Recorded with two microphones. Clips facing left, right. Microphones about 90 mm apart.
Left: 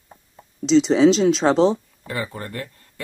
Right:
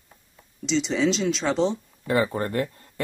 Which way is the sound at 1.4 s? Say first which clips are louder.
Left 6 dB; 40° left (ahead or behind).